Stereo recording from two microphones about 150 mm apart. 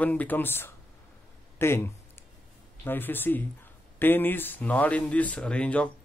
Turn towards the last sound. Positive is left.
turn(degrees=10)  # may be behind; listen again after turning